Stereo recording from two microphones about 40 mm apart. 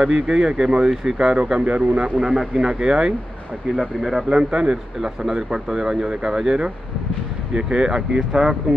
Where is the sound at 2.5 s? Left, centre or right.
Right.